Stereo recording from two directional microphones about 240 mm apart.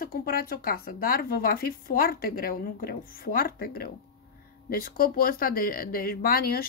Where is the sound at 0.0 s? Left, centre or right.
Left.